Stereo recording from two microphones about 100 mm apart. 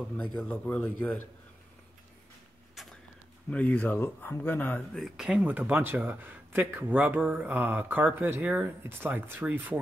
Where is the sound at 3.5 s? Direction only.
15° left (ahead or behind).